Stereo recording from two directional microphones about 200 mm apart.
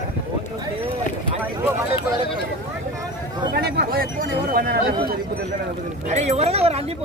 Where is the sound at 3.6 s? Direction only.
50° right (ahead or behind).